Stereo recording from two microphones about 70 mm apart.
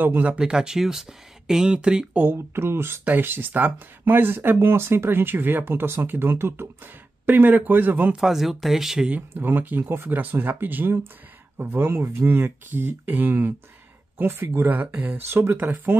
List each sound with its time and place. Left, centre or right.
0.0 s speech: right
0.3 s speech: centre
2.1 s speech: right
8.2 s speech: centre
9.3 s speech: right
15.2 s speech: right